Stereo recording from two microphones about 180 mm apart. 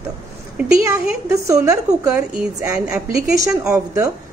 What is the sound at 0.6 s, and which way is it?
A woman's voice, 15° right (ahead or behind).